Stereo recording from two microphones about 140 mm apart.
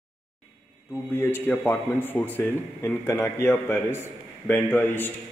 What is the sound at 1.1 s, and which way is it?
A man's voice, 15° left (ahead or behind).